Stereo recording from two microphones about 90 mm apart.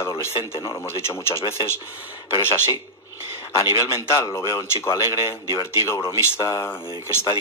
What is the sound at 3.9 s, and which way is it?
Speech, 35° left (ahead or behind).